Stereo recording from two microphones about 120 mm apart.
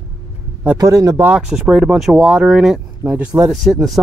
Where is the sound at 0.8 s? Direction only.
30° right (ahead or behind).